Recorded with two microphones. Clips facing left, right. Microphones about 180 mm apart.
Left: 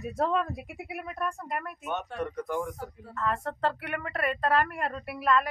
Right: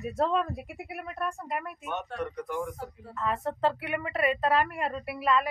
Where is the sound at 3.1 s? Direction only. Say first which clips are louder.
Even; 5° right (ahead or behind).